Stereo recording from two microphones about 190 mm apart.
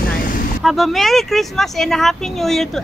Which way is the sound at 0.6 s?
Centre (ahead or behind).